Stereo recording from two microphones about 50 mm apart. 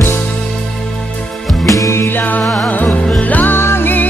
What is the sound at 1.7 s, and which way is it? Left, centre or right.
Music, left.